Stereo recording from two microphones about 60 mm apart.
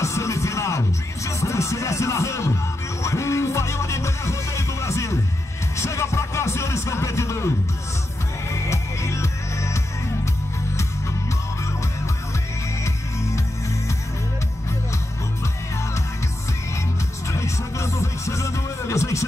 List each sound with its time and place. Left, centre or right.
0.0 s music: left
5.8 s a sound: left
8.5 s music: left
17.3 s music: left